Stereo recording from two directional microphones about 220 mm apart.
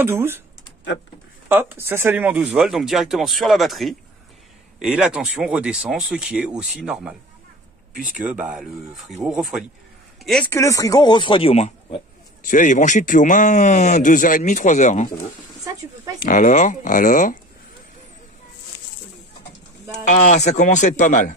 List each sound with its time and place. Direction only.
0.0 s speech: 10° right (ahead or behind)
1.5 s speech: 10° right (ahead or behind)
8.2 s a man's voice: 5° right (ahead or behind); by 15.0 s 35° left (ahead or behind)
16.2 s a man's voice: 35° left (ahead or behind)
20.1 s a man's voice: 35° left (ahead or behind)